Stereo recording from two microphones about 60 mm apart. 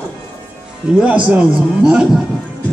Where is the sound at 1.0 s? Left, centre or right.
Right.